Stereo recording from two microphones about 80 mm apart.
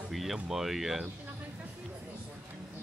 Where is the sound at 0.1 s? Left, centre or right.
Centre.